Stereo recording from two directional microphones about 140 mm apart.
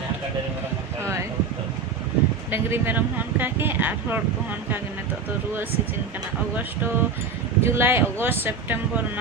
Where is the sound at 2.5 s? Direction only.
15° right (ahead or behind).